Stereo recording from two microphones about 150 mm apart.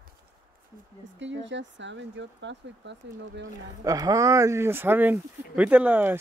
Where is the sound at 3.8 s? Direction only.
25° right (ahead or behind).